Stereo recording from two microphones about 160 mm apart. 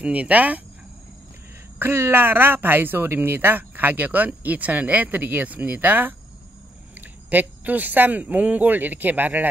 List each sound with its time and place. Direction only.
0.0 s speech: 10° right (ahead or behind)
1.8 s speech: 15° right (ahead or behind)